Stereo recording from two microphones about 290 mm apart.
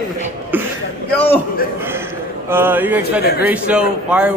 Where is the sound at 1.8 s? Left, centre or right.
Centre.